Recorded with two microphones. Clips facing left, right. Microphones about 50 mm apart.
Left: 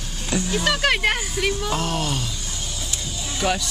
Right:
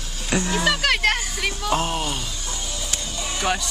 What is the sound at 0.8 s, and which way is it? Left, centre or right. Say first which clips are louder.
Speech: even; centre.